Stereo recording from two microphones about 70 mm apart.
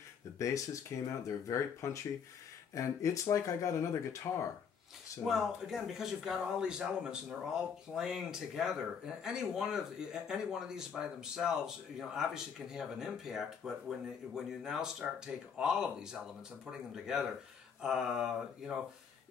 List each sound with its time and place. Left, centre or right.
0.4 s speech: left
5.2 s speech: centre